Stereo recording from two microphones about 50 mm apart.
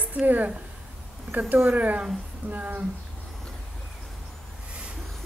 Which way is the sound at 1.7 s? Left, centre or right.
Right.